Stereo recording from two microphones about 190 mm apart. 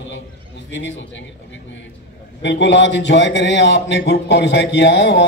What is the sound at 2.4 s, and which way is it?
A man's voice, 70° left (ahead or behind).